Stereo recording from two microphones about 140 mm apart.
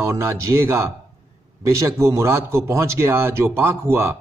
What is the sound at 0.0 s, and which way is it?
A man's voice, 20° right (ahead or behind).